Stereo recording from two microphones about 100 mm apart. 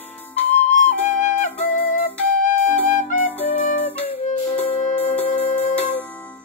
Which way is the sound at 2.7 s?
15° left (ahead or behind).